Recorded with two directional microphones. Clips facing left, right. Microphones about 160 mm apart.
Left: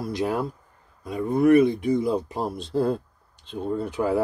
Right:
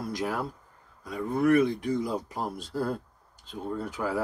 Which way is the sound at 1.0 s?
20° left (ahead or behind).